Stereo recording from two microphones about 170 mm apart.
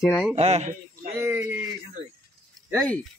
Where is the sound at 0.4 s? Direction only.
40° right (ahead or behind).